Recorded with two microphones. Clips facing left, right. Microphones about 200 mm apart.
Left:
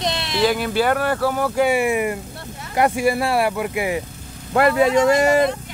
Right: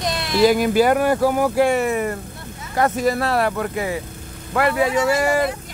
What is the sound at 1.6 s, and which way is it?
Speech, 10° left (ahead or behind).